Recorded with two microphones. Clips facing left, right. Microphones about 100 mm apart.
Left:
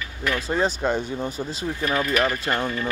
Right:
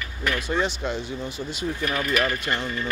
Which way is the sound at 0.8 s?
50° left (ahead or behind).